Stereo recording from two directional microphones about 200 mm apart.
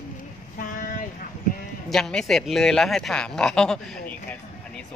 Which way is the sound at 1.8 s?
Centre (ahead or behind).